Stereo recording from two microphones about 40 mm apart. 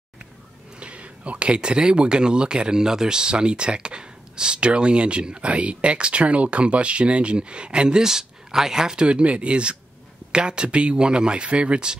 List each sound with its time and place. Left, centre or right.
0.7 s speech: right
8.0 s speech: centre